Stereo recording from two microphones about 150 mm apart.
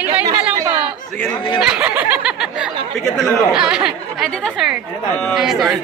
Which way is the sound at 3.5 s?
5° right (ahead or behind).